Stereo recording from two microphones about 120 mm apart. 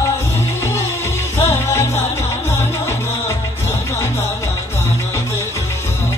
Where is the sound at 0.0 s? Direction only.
20° left (ahead or behind).